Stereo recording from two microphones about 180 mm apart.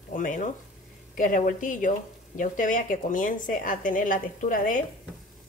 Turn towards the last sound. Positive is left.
turn(degrees=50)  # may be behind; listen again after turning